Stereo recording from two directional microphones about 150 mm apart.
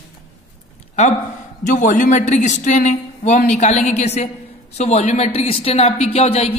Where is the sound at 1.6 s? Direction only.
60° left (ahead or behind).